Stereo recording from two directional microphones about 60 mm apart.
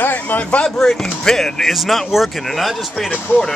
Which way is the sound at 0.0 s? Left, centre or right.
Left.